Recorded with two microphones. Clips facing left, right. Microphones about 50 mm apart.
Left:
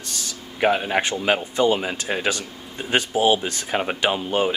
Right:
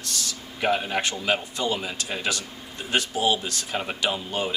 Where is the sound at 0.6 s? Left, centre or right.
Left.